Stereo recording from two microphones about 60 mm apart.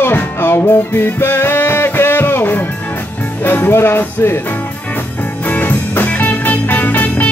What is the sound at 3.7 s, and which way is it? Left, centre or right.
Music, left.